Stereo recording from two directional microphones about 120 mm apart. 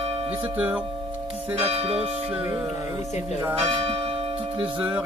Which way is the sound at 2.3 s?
15° right (ahead or behind).